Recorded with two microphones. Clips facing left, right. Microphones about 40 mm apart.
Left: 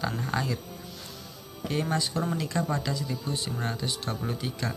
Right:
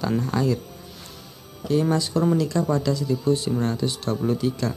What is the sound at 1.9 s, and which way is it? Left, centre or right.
A man's voice, centre.